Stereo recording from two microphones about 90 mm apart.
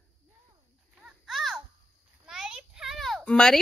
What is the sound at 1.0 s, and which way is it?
Children playing, centre (ahead or behind).